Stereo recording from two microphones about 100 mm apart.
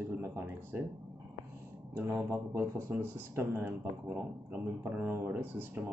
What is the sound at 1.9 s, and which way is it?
Speech, 25° right (ahead or behind).